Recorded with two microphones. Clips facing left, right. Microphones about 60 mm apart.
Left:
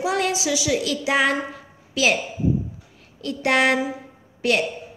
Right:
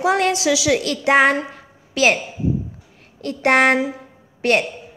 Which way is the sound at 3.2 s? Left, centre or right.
Right.